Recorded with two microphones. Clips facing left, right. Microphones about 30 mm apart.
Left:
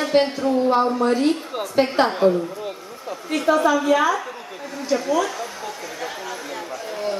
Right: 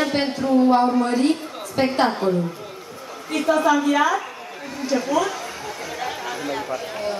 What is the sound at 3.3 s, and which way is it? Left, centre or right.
A woman's voice, centre.